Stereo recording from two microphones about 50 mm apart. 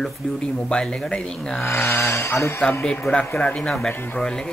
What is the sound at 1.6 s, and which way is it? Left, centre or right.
Speech, left.